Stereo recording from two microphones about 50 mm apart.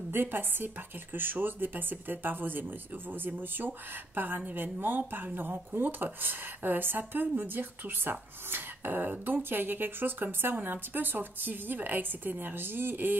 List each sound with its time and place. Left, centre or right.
0.1 s speech: right